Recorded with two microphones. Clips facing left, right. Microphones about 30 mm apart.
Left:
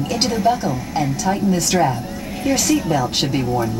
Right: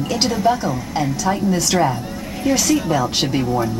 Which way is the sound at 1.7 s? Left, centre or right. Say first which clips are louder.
Even; centre.